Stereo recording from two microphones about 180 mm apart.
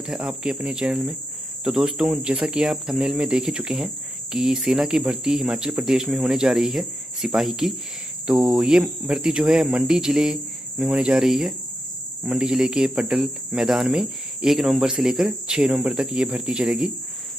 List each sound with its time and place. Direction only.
0.0 s cricket: 5° right (ahead or behind)